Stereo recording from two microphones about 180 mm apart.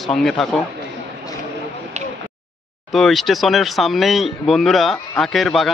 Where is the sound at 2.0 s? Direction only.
40° right (ahead or behind).